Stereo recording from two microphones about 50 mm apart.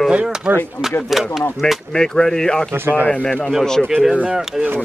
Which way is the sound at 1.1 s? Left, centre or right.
Centre.